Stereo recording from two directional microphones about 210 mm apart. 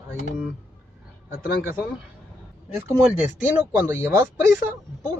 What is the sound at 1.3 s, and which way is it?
Speech, 45° left (ahead or behind).